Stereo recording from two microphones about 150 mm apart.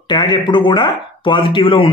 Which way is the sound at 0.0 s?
30° left (ahead or behind).